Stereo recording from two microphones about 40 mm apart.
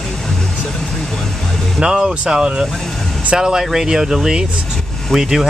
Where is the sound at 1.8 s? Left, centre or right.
Right.